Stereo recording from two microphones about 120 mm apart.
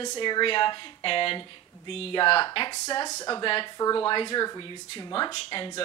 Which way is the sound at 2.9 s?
30° left (ahead or behind).